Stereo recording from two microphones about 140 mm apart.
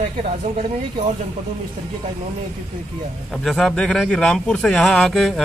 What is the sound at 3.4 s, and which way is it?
Speech, 5° left (ahead or behind).